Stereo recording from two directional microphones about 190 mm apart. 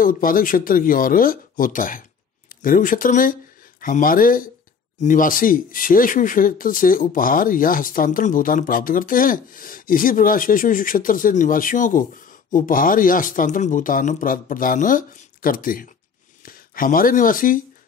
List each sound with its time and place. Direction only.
0.0 s speech: 50° left (ahead or behind)